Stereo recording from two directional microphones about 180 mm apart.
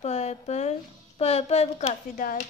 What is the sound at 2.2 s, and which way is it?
Speech, 50° left (ahead or behind).